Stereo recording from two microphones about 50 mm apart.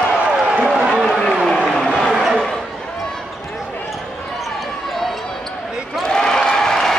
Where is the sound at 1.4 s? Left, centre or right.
Centre.